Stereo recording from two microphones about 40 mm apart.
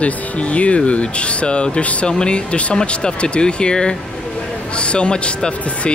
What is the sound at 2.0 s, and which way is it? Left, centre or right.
Speech, left.